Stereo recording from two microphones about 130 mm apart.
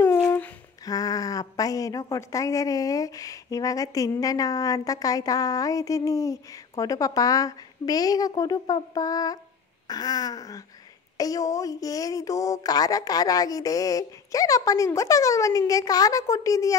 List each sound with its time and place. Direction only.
0.8 s a woman's voice: 30° left (ahead or behind)